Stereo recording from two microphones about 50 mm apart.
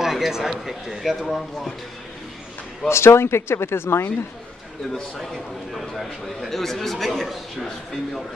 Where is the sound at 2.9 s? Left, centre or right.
Left.